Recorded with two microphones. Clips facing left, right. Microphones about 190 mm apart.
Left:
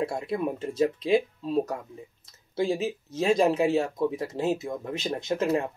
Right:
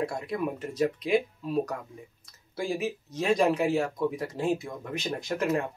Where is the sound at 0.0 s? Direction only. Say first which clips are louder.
Left 2 dB; 25° left (ahead or behind).